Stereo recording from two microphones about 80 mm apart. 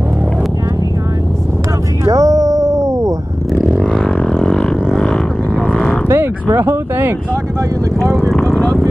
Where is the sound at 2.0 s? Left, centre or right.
Right.